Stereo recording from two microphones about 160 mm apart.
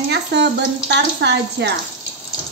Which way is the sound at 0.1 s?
90° right.